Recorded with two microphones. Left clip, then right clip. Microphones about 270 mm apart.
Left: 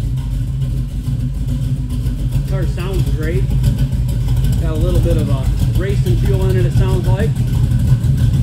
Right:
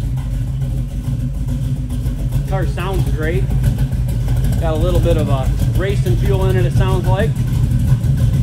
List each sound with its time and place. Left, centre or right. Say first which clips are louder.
2.5 s speech: right 3 dB; centre
4.6 s speech: right 4 dB; centre